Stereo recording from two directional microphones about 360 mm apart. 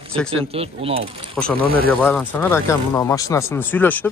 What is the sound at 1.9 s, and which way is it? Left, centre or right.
Speech, centre.